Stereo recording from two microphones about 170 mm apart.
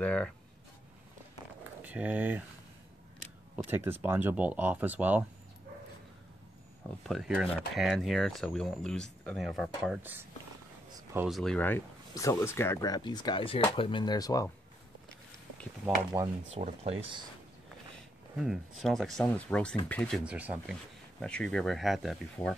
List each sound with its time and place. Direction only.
0.0 s speech: 5° left (ahead or behind)
1.8 s speech: 10° right (ahead or behind)
3.5 s speech: 10° right (ahead or behind)
7.0 s speech: centre (ahead or behind)
9.8 s speech: 5° right (ahead or behind)
11.2 s speech: centre (ahead or behind); by 14.5 s 20° left (ahead or behind)
16.1 s speech: 10° right (ahead or behind)
16.5 s speech: 40° right (ahead or behind)
17.9 s speech: centre (ahead or behind)
20.2 s speech: 10° right (ahead or behind)
21.2 s speech: 5° left (ahead or behind)